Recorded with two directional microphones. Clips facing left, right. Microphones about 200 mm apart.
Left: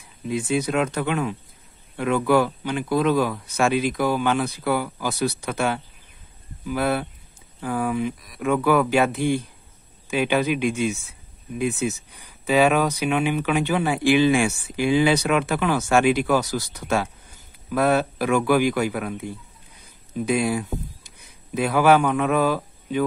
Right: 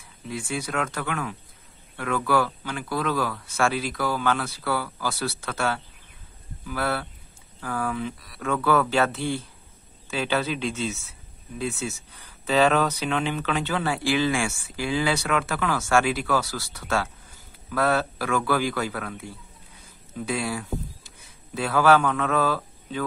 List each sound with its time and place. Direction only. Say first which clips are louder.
0.3 s speech: left 7 dB; 20° left (ahead or behind)